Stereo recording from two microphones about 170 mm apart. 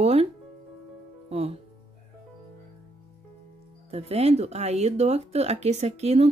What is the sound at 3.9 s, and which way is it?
Speech, 35° right (ahead or behind).